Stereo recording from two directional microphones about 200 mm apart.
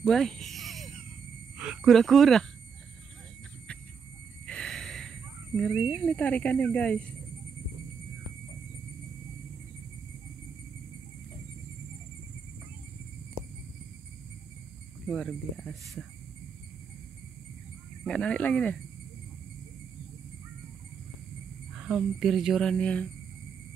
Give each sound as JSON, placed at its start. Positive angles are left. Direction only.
{"t": 0.0, "sound": "a sound", "side_deg": 0}
{"t": 1.6, "sound": "speech", "side_deg": -5}
{"t": 4.5, "sound": "gasp", "side_deg": 5}
{"t": 5.7, "sound": "speech", "side_deg": 0}
{"t": 15.0, "sound": "speech", "side_deg": 5}
{"t": 18.0, "sound": "speech", "side_deg": 5}
{"t": 21.7, "sound": "speech", "side_deg": 0}